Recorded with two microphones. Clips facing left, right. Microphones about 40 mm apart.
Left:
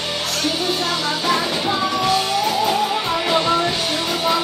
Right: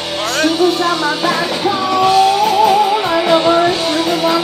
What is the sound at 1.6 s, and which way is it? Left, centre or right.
Music, right.